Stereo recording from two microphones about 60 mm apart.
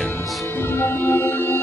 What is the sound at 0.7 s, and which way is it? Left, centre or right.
Music, left.